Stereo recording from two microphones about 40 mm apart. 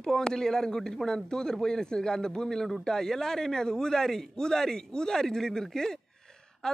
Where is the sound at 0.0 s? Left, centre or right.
Centre.